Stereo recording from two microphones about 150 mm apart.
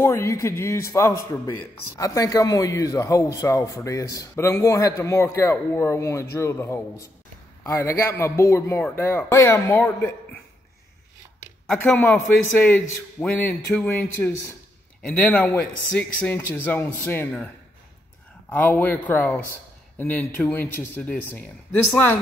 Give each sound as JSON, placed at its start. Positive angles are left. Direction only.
{"t": 0.0, "sound": "a man's voice", "side_deg": 20}
{"t": 11.9, "sound": "a man's voice", "side_deg": 10}
{"t": 18.5, "sound": "a man's voice", "side_deg": 10}